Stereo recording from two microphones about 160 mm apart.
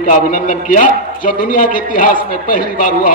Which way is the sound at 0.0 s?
55° left (ahead or behind).